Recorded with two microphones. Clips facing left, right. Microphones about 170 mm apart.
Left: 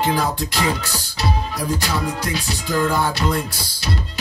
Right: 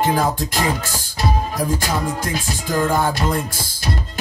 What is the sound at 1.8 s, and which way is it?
Music, 50° right (ahead or behind).